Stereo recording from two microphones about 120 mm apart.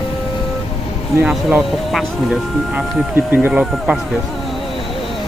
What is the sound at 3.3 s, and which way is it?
Speech, 10° right (ahead or behind).